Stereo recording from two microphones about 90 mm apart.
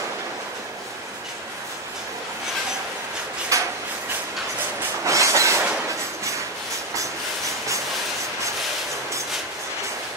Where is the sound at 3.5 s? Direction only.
35° right (ahead or behind).